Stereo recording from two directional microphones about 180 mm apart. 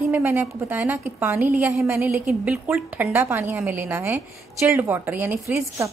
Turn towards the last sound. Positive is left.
turn(degrees=-10)  # may be behind; listen again after turning